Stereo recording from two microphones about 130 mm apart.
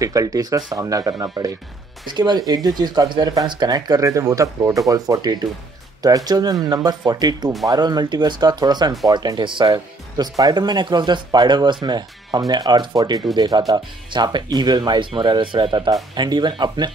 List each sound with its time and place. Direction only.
0.0 s speech: 25° right (ahead or behind)